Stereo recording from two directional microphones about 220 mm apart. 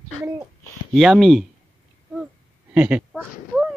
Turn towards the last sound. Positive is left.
turn(degrees=-5)  # may be behind; listen again after turning